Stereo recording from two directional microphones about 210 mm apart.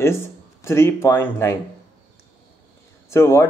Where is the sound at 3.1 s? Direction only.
10° left (ahead or behind).